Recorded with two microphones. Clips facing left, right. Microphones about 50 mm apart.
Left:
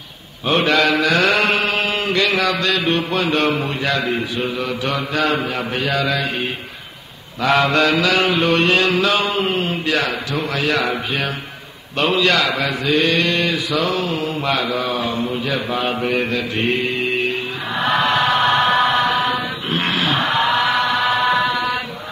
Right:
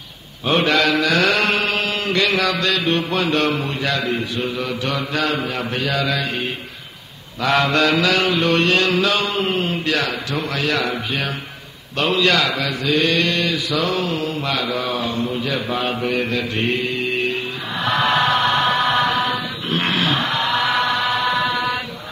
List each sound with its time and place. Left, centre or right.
0.5 s mantra: centre
1.3 s music: centre
2.0 s mantra: centre
2.7 s a man's voice: centre
7.4 s mantra: centre
8.2 s a man's voice: centre
12.0 s a man's voice: centre
13.3 s mantra: left
13.8 s a man's voice: centre
16.3 s mantra: centre
16.7 s music: left
17.7 s chant: centre
19.3 s music: centre
20.9 s chant: centre